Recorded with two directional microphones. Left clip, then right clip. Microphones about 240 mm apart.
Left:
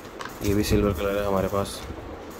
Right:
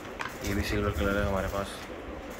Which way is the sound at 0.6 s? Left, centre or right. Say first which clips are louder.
Left 7 dB; left.